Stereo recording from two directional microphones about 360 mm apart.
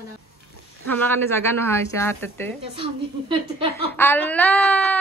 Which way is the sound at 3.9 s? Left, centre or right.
Centre.